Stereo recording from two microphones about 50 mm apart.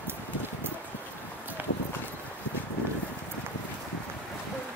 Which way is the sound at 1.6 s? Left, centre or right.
Right.